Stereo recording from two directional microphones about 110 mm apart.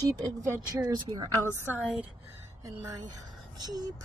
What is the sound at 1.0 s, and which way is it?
Speech, 45° right (ahead or behind).